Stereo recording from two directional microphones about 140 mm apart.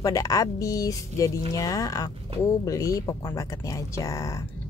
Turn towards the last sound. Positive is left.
turn(degrees=25)  # may be behind; listen again after turning